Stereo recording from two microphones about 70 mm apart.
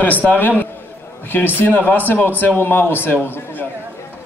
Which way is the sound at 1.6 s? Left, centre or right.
Left.